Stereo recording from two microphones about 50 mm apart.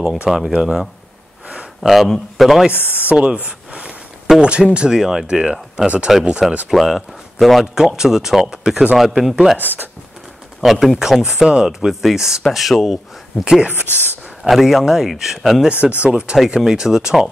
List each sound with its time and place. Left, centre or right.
0.2 s speech: centre
0.5 s speech: centre
1.8 s speech: centre
2.7 s speech: left
3.1 s speech: centre
3.4 s a sound: right
4.4 s speech: centre
7.7 s speech: centre
9.6 s speech: right
10.6 s speech: centre
11.0 s speech: centre
13.9 s speech: left
14.4 s speech: centre
16.1 s speech: centre